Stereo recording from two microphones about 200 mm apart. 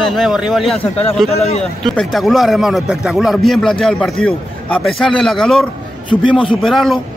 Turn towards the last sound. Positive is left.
turn(degrees=0)  # may be behind; listen again after turning